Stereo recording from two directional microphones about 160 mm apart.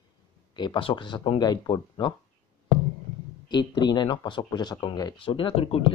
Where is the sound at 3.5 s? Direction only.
25° left (ahead or behind).